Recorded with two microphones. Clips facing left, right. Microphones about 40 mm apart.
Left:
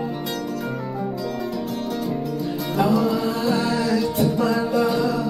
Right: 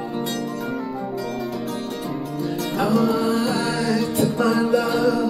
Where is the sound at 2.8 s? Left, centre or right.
Right.